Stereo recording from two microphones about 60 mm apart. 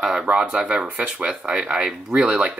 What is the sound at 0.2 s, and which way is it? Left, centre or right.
Speech, centre.